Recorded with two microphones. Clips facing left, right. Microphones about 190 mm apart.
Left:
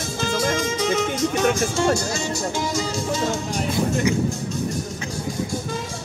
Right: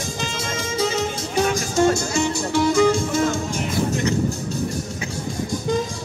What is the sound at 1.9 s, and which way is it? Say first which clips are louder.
Speech: right 3 dB; 60° right (ahead or behind).